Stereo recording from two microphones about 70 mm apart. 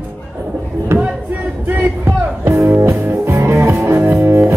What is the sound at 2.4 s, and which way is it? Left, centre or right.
Music, right.